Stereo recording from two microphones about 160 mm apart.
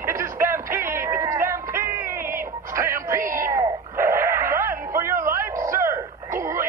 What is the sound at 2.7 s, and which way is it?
Music, 15° right (ahead or behind).